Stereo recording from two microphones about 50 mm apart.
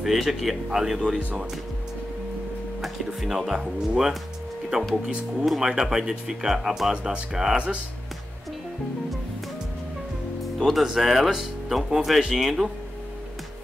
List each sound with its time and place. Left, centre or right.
0.0 s speech: centre
3.2 s speech: centre
5.4 s speech: centre
7.5 s speech: right
10.6 s speech: centre